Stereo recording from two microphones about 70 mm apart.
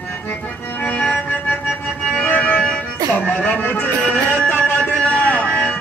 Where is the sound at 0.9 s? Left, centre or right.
Centre.